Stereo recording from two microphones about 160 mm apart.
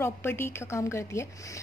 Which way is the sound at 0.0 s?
15° left (ahead or behind).